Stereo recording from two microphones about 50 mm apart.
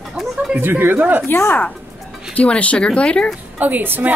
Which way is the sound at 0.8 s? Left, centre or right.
Right.